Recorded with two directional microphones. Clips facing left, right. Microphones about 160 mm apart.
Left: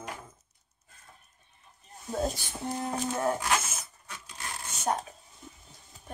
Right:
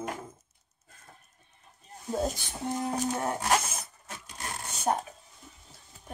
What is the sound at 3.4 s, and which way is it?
Zipper, 35° right (ahead or behind).